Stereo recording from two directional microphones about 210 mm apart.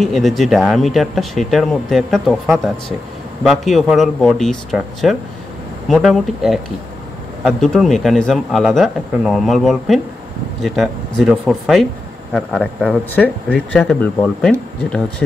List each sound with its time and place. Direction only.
0.0 s speech: centre (ahead or behind)